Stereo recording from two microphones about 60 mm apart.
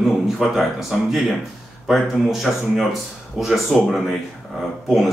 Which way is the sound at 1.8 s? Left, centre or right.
Centre.